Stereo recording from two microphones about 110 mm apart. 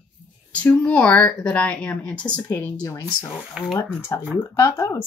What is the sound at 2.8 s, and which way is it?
Speech, 30° left (ahead or behind).